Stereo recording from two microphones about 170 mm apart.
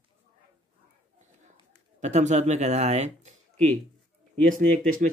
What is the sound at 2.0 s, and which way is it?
Speech, 40° right (ahead or behind).